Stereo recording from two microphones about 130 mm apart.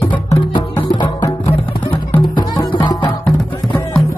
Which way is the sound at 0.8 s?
35° left (ahead or behind).